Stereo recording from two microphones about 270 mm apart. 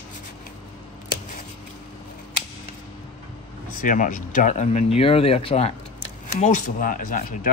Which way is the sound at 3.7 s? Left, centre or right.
Left.